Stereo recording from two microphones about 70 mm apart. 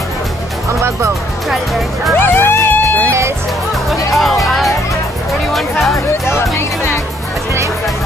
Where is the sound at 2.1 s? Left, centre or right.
Left.